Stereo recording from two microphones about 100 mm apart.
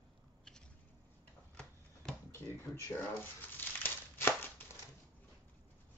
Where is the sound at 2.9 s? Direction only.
20° left (ahead or behind).